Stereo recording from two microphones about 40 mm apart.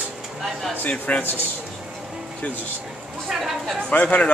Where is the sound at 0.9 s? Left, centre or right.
Left.